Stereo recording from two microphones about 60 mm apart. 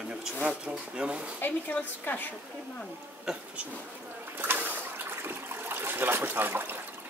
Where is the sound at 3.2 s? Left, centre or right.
Centre.